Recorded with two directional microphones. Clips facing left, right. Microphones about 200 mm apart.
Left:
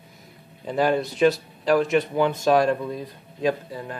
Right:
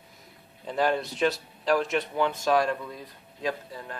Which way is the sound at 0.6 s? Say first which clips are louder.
Left 4 dB; 5° left (ahead or behind).